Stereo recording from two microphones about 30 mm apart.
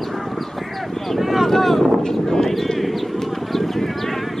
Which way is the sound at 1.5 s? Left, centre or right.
Centre.